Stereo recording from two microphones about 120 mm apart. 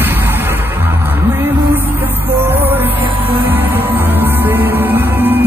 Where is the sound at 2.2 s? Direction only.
15° right (ahead or behind).